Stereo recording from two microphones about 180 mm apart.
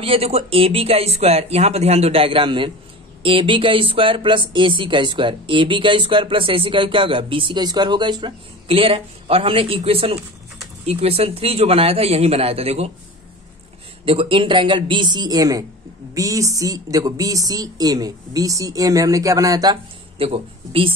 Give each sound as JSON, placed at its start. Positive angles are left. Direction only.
{"t": 0.0, "sound": "speech", "side_deg": -30}
{"t": 14.0, "sound": "speech", "side_deg": -30}